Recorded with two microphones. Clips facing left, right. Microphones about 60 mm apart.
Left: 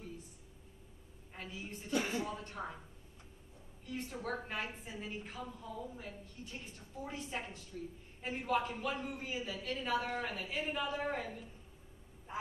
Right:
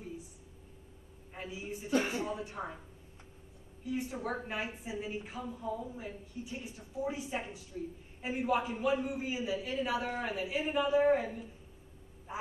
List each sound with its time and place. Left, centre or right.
1.3 s a woman's voice: centre
1.9 s speech: right
2.3 s a woman's voice: centre
3.8 s a woman's voice: centre